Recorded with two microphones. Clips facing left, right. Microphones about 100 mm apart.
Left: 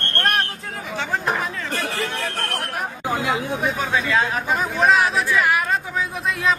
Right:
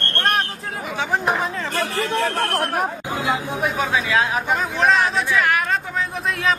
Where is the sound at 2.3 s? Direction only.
50° right (ahead or behind).